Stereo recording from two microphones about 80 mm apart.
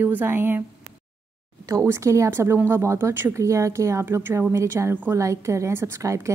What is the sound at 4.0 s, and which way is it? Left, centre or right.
Speech, right.